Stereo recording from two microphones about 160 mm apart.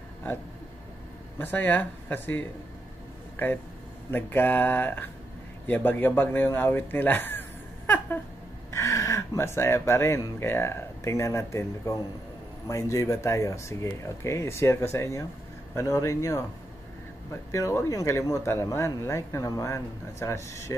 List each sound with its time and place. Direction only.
1.4 s speech: 10° left (ahead or behind)
4.1 s speech: 10° left (ahead or behind)
17.5 s speech: 20° left (ahead or behind)